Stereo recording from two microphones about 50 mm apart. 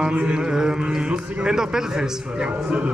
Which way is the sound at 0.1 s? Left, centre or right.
Right.